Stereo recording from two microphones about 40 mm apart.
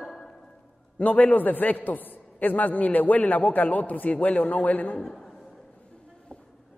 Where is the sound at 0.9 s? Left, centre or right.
Left.